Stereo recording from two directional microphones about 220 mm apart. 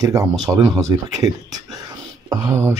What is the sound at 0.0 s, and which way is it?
Speech, 15° right (ahead or behind).